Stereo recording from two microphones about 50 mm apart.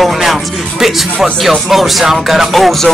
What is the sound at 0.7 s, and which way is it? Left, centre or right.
Speech, centre.